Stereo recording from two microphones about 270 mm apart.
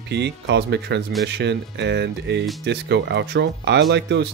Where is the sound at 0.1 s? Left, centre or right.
Right.